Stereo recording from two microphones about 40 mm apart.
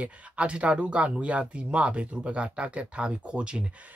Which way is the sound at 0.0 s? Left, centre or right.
Right.